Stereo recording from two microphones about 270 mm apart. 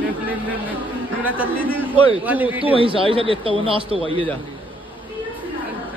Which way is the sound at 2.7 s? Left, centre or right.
Centre.